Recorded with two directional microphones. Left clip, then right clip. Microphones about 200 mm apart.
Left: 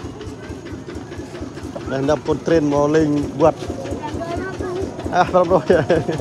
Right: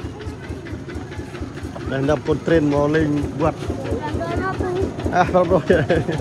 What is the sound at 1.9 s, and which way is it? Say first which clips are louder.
Speech: left 1 dB; 20° left (ahead or behind).